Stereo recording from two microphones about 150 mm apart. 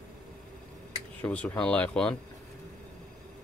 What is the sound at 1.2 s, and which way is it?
Speech, 10° left (ahead or behind).